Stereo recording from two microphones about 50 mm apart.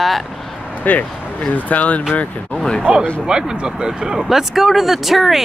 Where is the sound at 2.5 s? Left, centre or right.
Centre.